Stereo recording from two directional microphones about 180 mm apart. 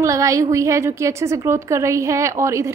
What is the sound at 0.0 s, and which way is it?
A woman's voice, 15° right (ahead or behind).